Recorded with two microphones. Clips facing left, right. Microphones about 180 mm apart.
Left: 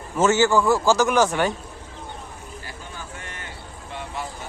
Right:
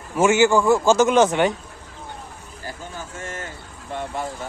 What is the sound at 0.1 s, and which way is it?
A man's voice, 10° right (ahead or behind).